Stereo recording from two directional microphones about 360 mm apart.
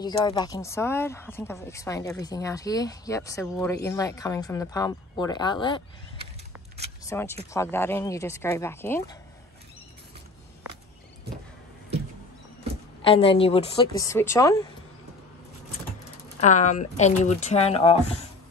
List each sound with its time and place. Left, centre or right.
0.0 s speech: centre
7.1 s speech: centre
13.0 s speech: centre
16.3 s speech: centre